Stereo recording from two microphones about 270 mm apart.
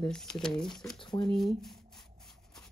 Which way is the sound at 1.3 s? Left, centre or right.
Centre.